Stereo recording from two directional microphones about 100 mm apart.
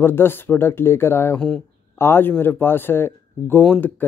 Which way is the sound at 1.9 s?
25° left (ahead or behind).